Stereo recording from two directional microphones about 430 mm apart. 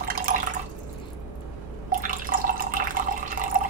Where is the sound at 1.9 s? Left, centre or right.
Centre.